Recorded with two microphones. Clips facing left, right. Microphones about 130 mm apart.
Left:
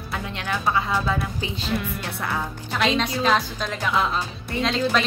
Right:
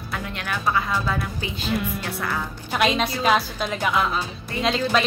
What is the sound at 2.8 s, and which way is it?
A woman's voice, 10° right (ahead or behind).